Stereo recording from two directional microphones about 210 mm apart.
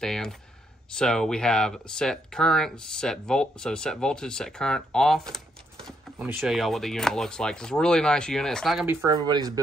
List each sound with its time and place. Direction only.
0.0 s speech: centre (ahead or behind)
9.0 s speech: 20° right (ahead or behind)